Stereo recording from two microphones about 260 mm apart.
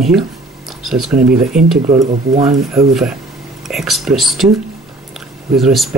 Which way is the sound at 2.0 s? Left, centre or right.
Right.